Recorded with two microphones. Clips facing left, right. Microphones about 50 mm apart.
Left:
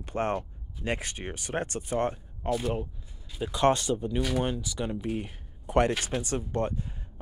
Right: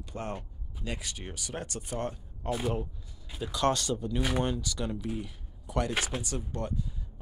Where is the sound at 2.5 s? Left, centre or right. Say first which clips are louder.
Left 3 dB; centre.